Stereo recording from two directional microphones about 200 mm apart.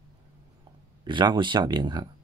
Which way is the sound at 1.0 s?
25° right (ahead or behind).